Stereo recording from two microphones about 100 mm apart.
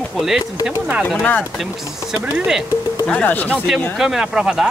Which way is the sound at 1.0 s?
15° left (ahead or behind).